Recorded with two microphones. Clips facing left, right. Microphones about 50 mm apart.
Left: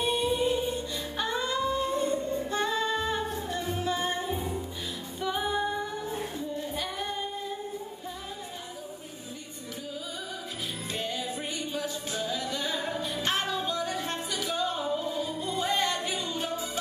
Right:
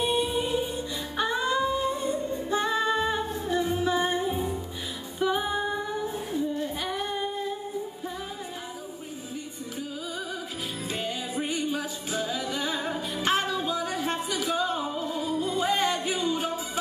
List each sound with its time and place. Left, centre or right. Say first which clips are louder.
0.0 s music: right 1 dB; centre
1.1 s singing: right 4 dB; centre
5.2 s music: right 3 dB; centre
11.0 s music: right 2 dB; centre
15.8 s a sound: right 3 dB; right
16.3 s music: right 5 dB; centre